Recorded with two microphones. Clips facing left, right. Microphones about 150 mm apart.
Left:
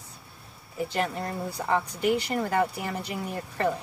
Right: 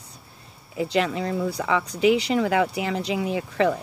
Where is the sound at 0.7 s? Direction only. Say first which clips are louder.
Right 5 dB; 90° right.